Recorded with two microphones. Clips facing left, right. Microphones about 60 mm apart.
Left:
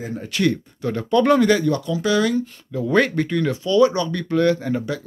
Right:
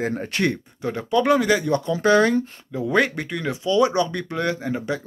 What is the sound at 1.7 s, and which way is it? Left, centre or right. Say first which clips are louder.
Speech: right 2 dB; right.